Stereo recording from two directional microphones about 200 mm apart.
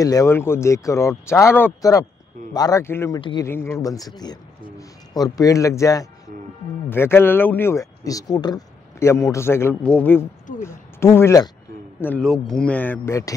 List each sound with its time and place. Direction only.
0.0 s speech: 15° left (ahead or behind)
3.2 s speech: 25° left (ahead or behind)
3.4 s speech: 15° left (ahead or behind)